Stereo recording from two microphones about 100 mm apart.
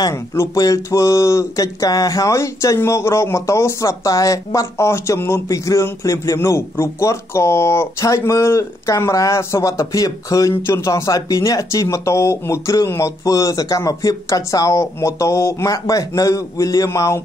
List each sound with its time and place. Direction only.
0.1 s speech: 30° left (ahead or behind)